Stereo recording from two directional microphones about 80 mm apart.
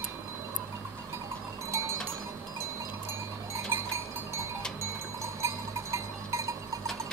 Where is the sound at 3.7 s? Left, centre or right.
Right.